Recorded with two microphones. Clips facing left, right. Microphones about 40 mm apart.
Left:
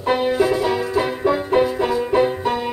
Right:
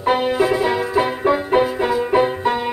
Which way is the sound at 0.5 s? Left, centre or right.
Right.